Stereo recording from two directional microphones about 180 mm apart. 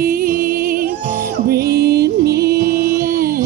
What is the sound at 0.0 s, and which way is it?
Music, 55° right (ahead or behind).